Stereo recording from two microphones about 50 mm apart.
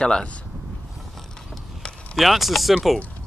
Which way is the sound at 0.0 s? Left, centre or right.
Centre.